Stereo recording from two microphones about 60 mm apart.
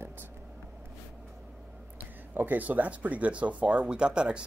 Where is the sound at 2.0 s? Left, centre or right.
Right.